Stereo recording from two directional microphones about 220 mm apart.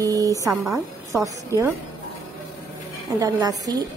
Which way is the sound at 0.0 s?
15° right (ahead or behind).